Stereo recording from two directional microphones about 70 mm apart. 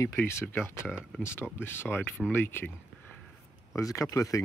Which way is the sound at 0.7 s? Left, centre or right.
Left.